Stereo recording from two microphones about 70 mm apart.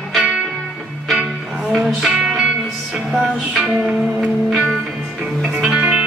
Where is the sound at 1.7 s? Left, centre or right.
Centre.